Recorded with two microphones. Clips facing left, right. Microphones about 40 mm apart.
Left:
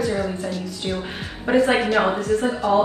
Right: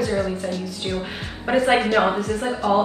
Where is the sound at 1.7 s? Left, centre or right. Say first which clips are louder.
Right 1 dB; centre.